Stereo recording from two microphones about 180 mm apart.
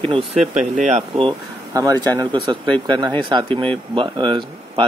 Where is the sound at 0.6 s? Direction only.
40° right (ahead or behind).